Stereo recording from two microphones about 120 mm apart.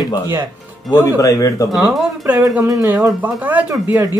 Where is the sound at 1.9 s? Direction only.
10° right (ahead or behind).